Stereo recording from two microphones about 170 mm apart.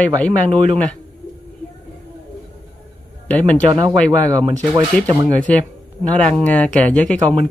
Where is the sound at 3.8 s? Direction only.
10° left (ahead or behind).